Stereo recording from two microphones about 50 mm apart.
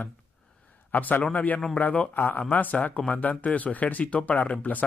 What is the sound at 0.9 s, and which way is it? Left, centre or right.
A man's voice, left.